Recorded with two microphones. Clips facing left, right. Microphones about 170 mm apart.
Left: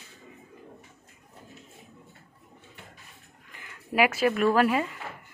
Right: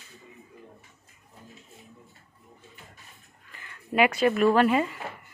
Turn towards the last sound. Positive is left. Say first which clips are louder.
# right 2 dB
turn(degrees=5)  # may be behind; listen again after turning